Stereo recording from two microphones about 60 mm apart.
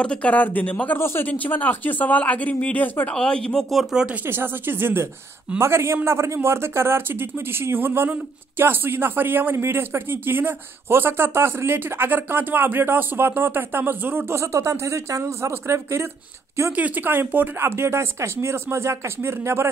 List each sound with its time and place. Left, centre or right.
0.0 s speech: centre
0.9 s speech: left
1.3 s speech: left
3.2 s speech: centre
3.7 s speech: centre
4.3 s speech: right
14.4 s speech: right
16.7 s speech: right